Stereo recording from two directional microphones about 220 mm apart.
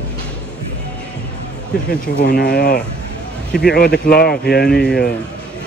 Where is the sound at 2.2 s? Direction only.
45° left (ahead or behind).